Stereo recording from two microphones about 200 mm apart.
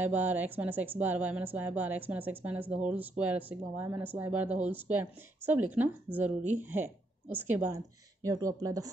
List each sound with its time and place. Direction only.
0.0 s a woman's voice: 10° right (ahead or behind)